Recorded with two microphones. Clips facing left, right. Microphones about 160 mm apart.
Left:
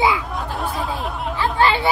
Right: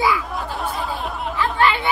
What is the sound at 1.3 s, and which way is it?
Speech, 30° left (ahead or behind).